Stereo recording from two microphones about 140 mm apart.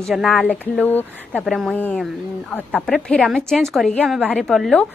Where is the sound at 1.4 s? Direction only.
Centre (ahead or behind).